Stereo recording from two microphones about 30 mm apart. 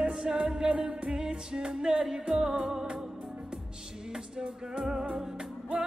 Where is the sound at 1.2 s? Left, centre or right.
Right.